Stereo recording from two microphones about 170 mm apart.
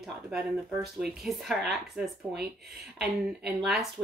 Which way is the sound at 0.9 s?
Centre (ahead or behind).